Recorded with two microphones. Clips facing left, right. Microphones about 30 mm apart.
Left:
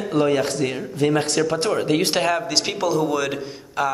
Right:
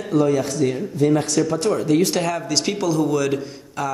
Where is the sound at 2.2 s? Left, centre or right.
Left.